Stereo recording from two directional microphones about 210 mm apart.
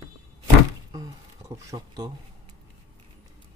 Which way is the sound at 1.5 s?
15° right (ahead or behind).